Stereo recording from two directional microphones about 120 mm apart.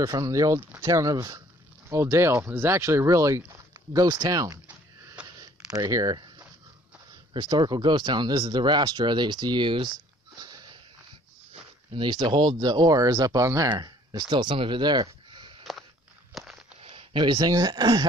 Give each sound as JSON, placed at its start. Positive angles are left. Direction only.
{"t": 0.0, "sound": "speech", "side_deg": -30}
{"t": 5.4, "sound": "a sound", "side_deg": -30}
{"t": 7.3, "sound": "speech", "side_deg": -35}
{"t": 16.3, "sound": "walk", "side_deg": 0}
{"t": 16.8, "sound": "speech", "side_deg": -40}